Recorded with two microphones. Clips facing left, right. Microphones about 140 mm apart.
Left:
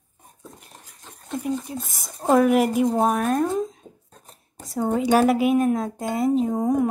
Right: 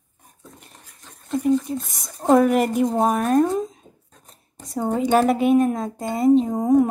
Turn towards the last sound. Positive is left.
turn(degrees=0)  # may be behind; listen again after turning